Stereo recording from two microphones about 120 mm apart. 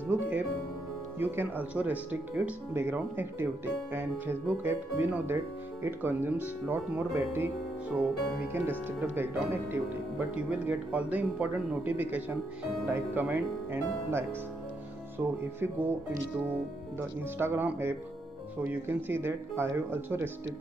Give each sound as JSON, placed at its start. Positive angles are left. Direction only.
{"t": 0.1, "sound": "music", "side_deg": -15}
{"t": 1.2, "sound": "speech", "side_deg": -15}
{"t": 7.9, "sound": "music", "side_deg": 0}
{"t": 8.5, "sound": "speech", "side_deg": -15}
{"t": 17.4, "sound": "speech", "side_deg": -20}